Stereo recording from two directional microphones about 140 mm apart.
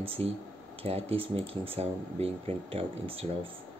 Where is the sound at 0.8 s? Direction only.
45° right (ahead or behind).